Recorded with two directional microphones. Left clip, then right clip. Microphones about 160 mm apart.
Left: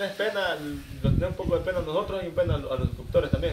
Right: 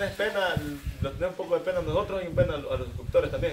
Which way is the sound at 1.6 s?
5° right (ahead or behind).